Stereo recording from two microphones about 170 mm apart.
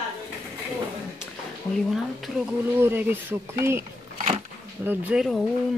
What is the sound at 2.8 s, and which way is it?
Speech, 15° right (ahead or behind).